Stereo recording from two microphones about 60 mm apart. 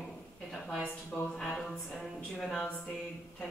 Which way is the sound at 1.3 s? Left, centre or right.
Centre.